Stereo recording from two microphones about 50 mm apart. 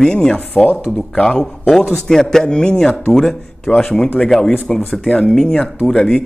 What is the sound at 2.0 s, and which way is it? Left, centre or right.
A man's voice, centre.